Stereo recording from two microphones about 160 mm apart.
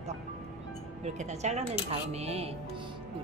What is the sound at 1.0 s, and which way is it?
A woman's voice, 45° right (ahead or behind).